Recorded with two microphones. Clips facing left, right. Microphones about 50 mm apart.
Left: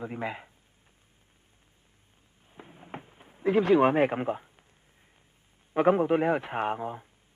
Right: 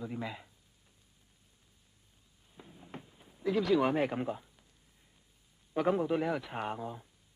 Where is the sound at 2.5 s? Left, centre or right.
Left.